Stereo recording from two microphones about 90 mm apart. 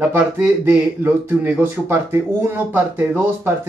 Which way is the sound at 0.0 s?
25° right (ahead or behind).